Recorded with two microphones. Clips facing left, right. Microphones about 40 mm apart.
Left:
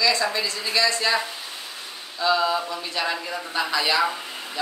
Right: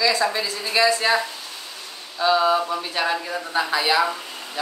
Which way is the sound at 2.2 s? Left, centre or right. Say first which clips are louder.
Right 3 dB; centre.